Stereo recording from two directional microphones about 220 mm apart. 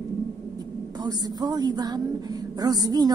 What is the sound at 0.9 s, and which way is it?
A woman's voice, 20° right (ahead or behind).